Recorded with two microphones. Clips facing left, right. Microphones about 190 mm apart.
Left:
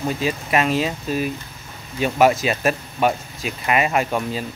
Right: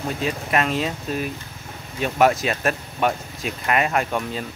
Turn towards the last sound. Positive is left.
turn(degrees=5)  # may be behind; listen again after turning